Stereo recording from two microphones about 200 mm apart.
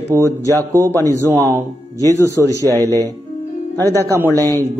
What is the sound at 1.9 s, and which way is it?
Speech, 15° left (ahead or behind).